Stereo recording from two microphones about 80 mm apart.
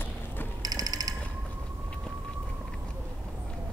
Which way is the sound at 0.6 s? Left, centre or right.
Right.